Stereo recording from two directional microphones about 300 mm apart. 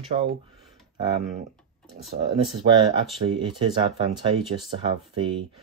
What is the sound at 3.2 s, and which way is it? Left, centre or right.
Speech, centre.